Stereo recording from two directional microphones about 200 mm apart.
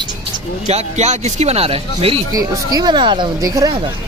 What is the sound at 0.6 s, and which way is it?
Speech, 35° right (ahead or behind).